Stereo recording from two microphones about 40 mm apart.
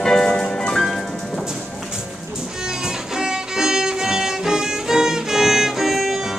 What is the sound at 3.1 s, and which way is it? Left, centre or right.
Music, centre.